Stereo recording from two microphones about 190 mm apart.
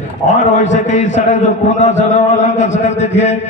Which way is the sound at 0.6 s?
40° left (ahead or behind).